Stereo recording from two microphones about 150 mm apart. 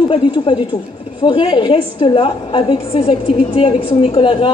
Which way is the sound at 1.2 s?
35° left (ahead or behind).